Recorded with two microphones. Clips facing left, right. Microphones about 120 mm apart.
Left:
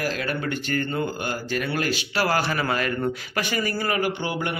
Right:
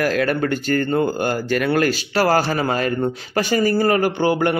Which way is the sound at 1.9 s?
40° right (ahead or behind).